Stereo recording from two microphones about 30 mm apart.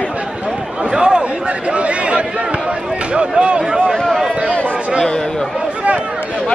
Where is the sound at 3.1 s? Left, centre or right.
Right.